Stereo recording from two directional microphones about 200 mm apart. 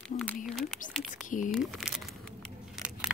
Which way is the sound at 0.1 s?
40° left (ahead or behind).